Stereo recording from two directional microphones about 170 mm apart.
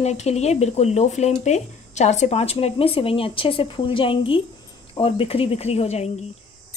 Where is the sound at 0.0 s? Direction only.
40° left (ahead or behind).